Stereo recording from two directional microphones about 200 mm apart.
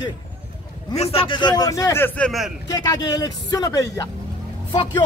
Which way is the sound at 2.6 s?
20° left (ahead or behind).